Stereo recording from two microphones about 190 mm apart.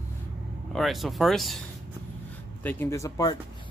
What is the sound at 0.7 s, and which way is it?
Speech, centre (ahead or behind).